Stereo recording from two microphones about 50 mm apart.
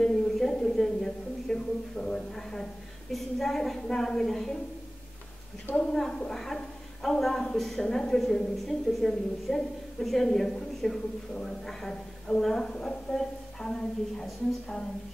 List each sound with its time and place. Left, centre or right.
0.0 s a woman's voice: centre
5.8 s a woman's voice: centre